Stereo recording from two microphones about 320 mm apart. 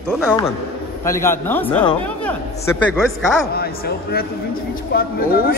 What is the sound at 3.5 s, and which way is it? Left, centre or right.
Speech, left.